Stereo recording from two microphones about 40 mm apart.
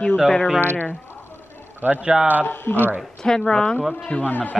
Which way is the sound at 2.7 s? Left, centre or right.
Left.